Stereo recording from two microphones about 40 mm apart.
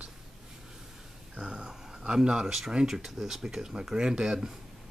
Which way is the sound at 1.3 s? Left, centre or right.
Right.